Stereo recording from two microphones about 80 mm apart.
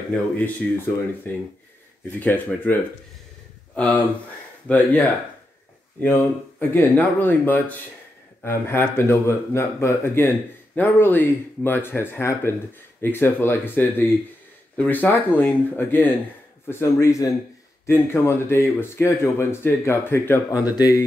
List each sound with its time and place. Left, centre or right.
0.4 s speech: left
3.7 s speech: left
16.6 s speech: left
20.5 s speech: left